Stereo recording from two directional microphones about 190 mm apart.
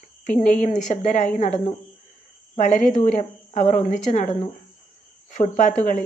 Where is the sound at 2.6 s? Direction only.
40° left (ahead or behind).